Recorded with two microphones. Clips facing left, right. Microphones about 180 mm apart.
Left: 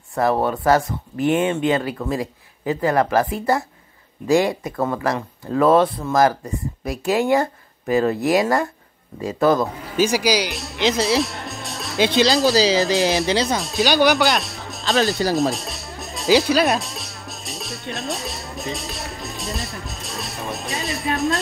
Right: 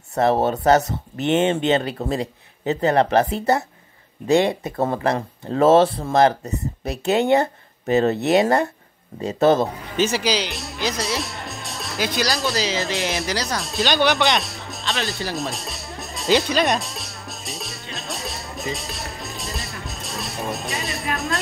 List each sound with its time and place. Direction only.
0.2 s speech: 25° right (ahead or behind)
9.8 s speech: 10° left (ahead or behind)
10.5 s speech: centre (ahead or behind)
11.1 s music: centre (ahead or behind)
12.0 s speech: 25° left (ahead or behind)
13.6 s speech: centre (ahead or behind)
14.1 s music: centre (ahead or behind)
15.2 s speech: 40° left (ahead or behind)
15.5 s music: centre (ahead or behind)